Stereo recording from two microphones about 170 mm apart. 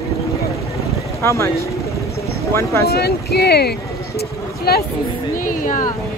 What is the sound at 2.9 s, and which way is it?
Speech, 70° left (ahead or behind).